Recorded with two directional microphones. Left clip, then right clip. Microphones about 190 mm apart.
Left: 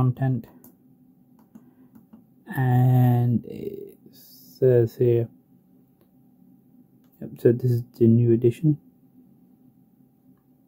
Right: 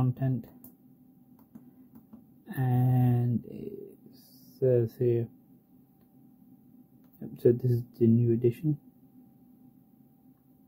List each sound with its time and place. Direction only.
0.0 s speech: 15° left (ahead or behind)
2.0 s speech: 15° left (ahead or behind)
7.2 s speech: 15° left (ahead or behind)